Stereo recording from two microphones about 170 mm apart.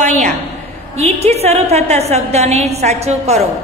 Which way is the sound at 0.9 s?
40° right (ahead or behind).